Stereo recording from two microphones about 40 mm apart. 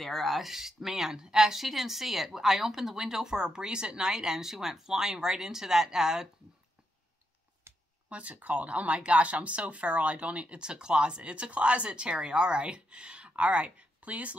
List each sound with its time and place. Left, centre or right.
0.0 s a woman's voice: centre
1.6 s a woman's voice: centre
8.1 s speech: right